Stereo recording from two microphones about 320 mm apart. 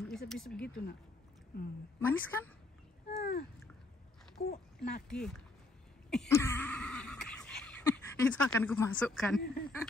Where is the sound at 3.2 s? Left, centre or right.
Left.